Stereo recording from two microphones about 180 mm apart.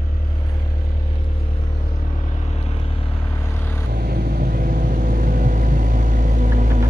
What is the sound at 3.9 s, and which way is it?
Vehicle, 60° right (ahead or behind).